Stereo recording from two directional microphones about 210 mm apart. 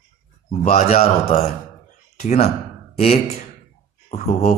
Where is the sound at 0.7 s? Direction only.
30° left (ahead or behind).